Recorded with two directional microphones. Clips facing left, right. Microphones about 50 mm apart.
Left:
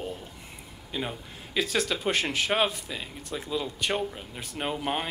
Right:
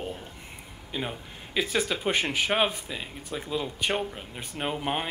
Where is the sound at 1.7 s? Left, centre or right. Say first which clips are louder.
Right 1 dB; centre.